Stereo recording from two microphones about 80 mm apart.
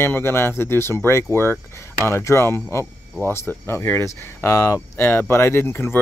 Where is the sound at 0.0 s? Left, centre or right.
Left.